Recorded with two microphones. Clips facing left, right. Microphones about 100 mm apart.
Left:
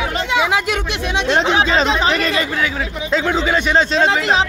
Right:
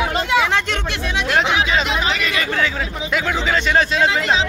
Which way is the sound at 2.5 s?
10° left (ahead or behind).